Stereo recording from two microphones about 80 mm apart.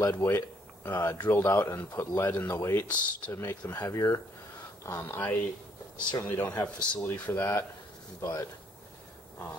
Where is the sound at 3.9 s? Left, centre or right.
Left.